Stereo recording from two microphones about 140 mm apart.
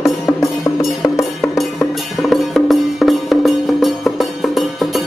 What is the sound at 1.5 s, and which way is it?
Music, centre (ahead or behind).